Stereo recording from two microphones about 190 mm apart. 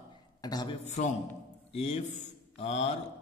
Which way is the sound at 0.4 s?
20° left (ahead or behind).